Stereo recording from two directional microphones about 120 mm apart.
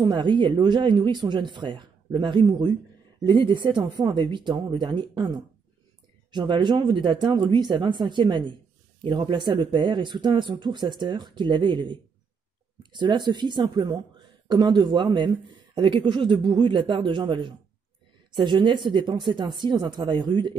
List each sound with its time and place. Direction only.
0.0 s speech: 40° right (ahead or behind)